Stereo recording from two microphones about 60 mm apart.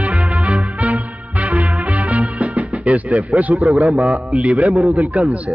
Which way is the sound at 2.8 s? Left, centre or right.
Right.